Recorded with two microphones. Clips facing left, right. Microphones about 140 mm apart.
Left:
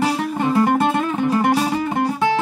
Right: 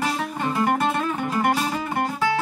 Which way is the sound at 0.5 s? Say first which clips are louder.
Left 5 dB; 25° left (ahead or behind).